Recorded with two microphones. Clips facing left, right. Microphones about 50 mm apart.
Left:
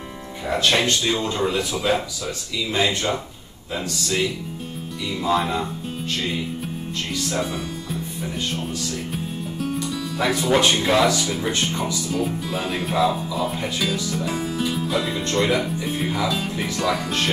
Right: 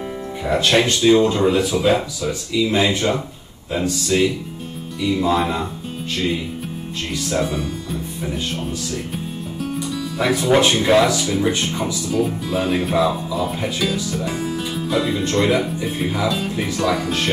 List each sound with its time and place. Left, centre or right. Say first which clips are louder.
0.4 s speech: right 3 dB; centre
7.1 s speech: right 4 dB; centre